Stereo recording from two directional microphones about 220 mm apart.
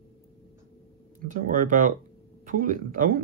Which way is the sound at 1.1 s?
40° right (ahead or behind).